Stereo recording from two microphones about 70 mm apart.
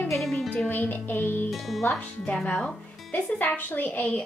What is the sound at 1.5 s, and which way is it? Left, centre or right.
Music, centre.